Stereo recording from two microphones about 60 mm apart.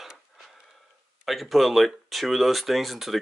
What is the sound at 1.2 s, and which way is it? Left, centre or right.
Speech, centre.